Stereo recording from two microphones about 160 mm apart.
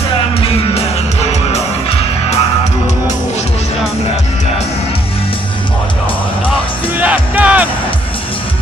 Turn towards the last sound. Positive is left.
turn(degrees=-10)  # may be behind; listen again after turning